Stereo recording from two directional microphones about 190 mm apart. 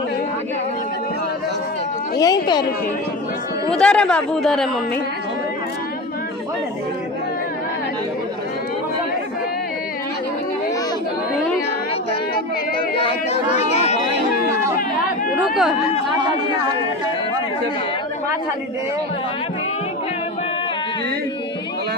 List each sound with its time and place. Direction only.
2.1 s speech: 20° left (ahead or behind)
3.7 s speech: 5° left (ahead or behind)
13.0 s chatter: 35° left (ahead or behind)
15.3 s chatter: centre (ahead or behind)